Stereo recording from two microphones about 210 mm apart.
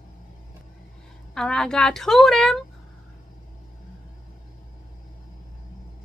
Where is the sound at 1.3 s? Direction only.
5° left (ahead or behind).